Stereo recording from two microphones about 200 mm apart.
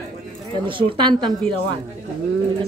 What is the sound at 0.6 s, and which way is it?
Speech, 25° right (ahead or behind).